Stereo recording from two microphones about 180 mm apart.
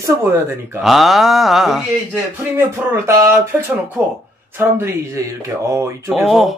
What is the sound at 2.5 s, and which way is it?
Speech, 15° right (ahead or behind).